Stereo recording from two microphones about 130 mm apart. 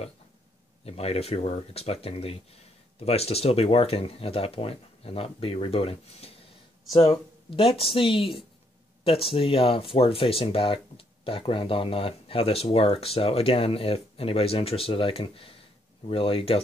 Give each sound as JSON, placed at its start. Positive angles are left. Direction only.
{"t": 0.8, "sound": "speech", "side_deg": 50}